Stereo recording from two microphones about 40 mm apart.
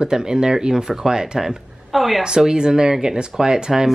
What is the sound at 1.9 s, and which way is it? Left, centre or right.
Speech, centre.